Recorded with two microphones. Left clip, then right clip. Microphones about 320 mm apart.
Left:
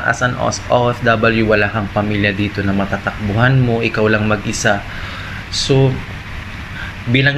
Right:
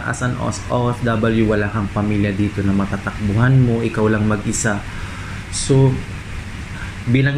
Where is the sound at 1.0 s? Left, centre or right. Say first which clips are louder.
Left 5 dB; left.